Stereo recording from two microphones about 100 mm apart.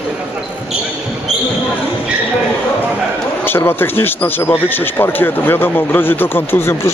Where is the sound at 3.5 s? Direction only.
20° left (ahead or behind).